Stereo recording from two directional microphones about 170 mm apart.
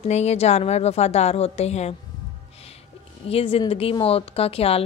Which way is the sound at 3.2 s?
35° left (ahead or behind).